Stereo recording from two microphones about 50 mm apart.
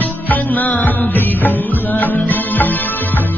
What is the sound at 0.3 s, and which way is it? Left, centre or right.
Music, left.